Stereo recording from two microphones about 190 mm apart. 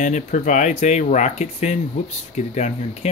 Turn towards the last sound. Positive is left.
turn(degrees=35)  # may be behind; listen again after turning